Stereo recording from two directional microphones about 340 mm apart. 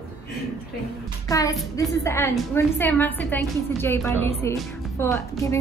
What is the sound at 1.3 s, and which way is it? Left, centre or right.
A woman's voice, centre.